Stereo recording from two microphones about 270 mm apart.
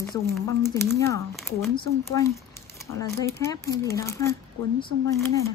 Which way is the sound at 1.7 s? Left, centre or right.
Centre.